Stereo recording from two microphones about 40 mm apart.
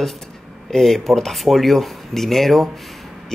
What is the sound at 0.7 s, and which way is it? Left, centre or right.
Speech, centre.